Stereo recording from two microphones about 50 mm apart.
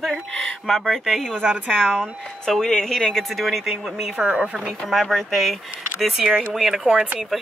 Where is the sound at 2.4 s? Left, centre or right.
Centre.